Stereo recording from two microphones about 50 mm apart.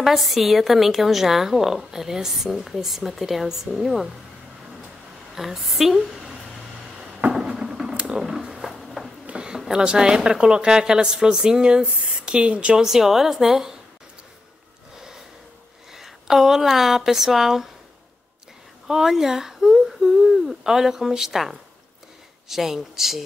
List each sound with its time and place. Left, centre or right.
0.0 s a woman's voice: centre
5.3 s a woman's voice: centre
7.3 s a sound: centre
8.2 s a sound: centre
9.2 s a sound: centre
9.6 s a woman's voice: centre
12.8 s a woman's voice: centre
15.9 s speech: centre
18.9 s a woman's voice: centre